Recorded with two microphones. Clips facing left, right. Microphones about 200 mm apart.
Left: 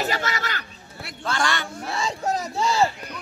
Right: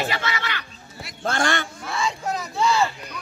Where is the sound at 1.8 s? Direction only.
40° left (ahead or behind).